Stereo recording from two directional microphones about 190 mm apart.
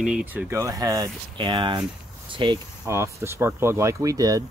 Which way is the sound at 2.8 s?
15° right (ahead or behind).